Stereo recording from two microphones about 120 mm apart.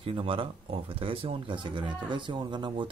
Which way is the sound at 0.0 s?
50° right (ahead or behind).